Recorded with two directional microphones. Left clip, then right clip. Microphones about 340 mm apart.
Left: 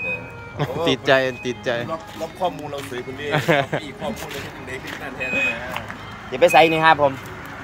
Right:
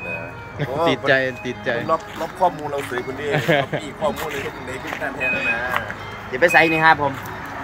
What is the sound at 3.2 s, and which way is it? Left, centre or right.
Speech, centre.